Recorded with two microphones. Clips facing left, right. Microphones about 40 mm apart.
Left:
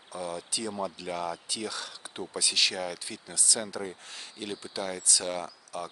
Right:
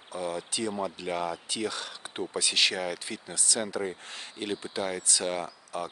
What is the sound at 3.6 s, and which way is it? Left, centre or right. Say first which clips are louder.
Speech: right 4 dB; right.